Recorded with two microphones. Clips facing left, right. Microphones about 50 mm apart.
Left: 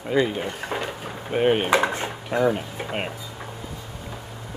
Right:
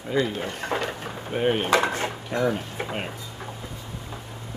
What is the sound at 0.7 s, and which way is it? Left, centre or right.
Dishes, centre.